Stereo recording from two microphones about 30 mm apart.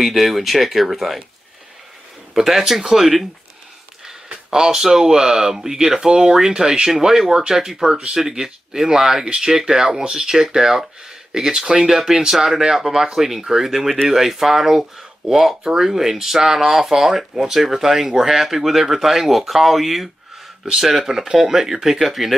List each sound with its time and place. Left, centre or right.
0.0 s speech: centre
2.3 s speech: centre
4.5 s speech: right; by 20.1 s centre
20.6 s speech: centre